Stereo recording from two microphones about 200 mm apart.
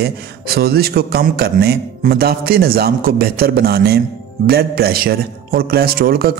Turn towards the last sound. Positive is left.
turn(degrees=-50)  # may be behind; listen again after turning